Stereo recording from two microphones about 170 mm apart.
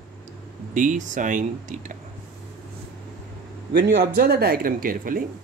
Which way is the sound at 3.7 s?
70° right (ahead or behind).